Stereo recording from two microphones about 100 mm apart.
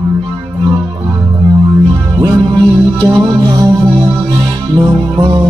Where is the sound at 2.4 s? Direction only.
40° right (ahead or behind).